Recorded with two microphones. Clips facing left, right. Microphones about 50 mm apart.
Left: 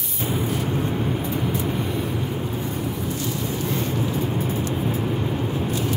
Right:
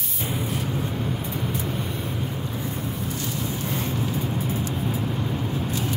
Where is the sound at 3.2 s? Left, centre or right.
Left.